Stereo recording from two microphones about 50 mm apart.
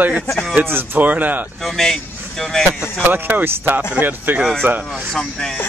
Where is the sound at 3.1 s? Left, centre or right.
Right.